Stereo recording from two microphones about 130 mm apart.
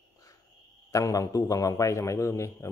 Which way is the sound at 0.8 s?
25° left (ahead or behind).